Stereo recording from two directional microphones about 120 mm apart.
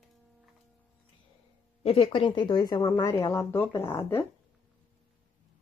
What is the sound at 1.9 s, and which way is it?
Speech, 60° left (ahead or behind).